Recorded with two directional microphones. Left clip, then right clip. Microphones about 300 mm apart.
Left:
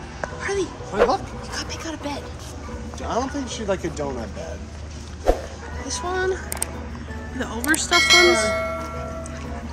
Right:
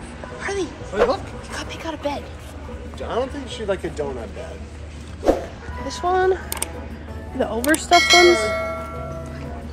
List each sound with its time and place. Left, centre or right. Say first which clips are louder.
0.4 s speech: right 1 dB; centre
3.0 s speech: right 1 dB; centre
5.3 s music: right 3 dB; centre
5.9 s speech: right 5 dB; centre